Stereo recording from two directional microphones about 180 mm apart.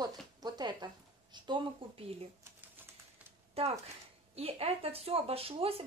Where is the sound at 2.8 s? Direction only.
10° right (ahead or behind).